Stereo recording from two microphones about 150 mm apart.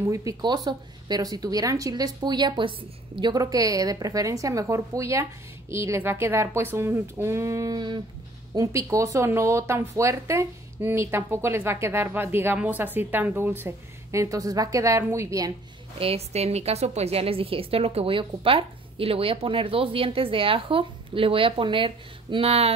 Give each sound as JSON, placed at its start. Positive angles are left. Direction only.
{"t": 0.0, "sound": "a woman's voice", "side_deg": -20}
{"t": 16.0, "sound": "a woman's voice", "side_deg": -40}